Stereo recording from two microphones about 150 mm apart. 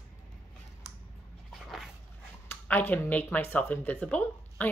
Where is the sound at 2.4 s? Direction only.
15° left (ahead or behind).